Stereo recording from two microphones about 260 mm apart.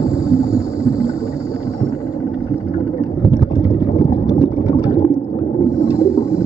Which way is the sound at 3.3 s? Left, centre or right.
Centre.